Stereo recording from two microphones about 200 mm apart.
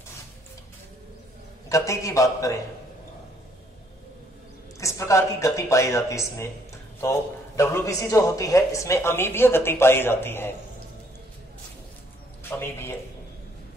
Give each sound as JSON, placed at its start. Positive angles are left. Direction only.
{"t": 1.7, "sound": "a man's voice", "side_deg": 15}
{"t": 4.7, "sound": "a man's voice", "side_deg": 15}
{"t": 12.4, "sound": "a man's voice", "side_deg": 10}